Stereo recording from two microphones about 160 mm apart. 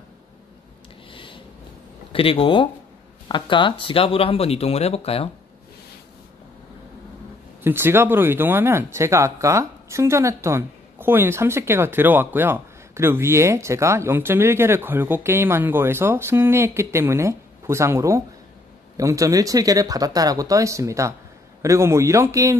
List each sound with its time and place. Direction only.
1.1 s a sound: 30° left (ahead or behind)
2.1 s speech: 35° left (ahead or behind)
7.6 s speech: 15° right (ahead or behind)